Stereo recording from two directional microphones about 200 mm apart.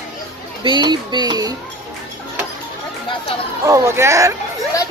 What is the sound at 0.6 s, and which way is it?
Speech, 20° right (ahead or behind).